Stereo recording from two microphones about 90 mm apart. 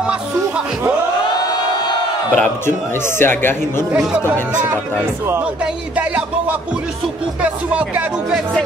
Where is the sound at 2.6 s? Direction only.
25° left (ahead or behind).